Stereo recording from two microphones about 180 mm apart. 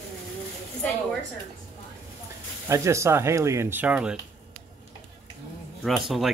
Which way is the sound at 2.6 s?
15° right (ahead or behind).